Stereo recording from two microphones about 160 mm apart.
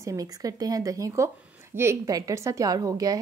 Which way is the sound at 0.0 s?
20° right (ahead or behind).